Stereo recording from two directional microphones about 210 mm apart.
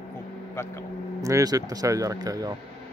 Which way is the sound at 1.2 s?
15° right (ahead or behind).